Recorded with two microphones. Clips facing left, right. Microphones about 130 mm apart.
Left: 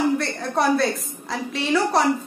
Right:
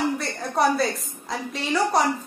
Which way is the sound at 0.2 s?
Centre (ahead or behind).